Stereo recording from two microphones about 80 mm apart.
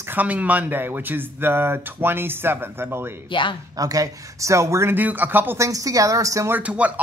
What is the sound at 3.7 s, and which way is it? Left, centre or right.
Speech, right.